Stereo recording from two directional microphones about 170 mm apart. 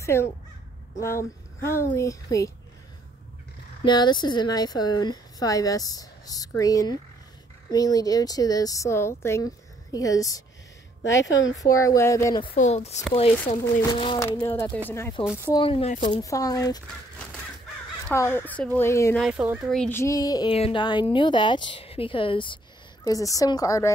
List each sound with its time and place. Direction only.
0.0 s a woman's voice: 15° left (ahead or behind)
3.8 s speech: 25° left (ahead or behind)
12.5 s speech: 40° left (ahead or behind); by 14.5 s 25° left (ahead or behind)
14.5 s a woman's voice: 15° left (ahead or behind)
15.5 s speech: 30° left (ahead or behind)
16.1 s speech: 20° left (ahead or behind)
18.1 s a woman's voice: 15° left (ahead or behind)
19.1 s speech: centre (ahead or behind)
19.9 s speech: 15° left (ahead or behind)
20.5 s speech: 30° left (ahead or behind)